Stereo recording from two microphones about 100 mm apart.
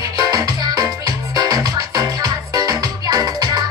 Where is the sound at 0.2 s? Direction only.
40° right (ahead or behind).